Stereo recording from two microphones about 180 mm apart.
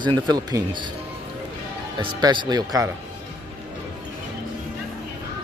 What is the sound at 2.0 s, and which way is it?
Speech, 25° right (ahead or behind).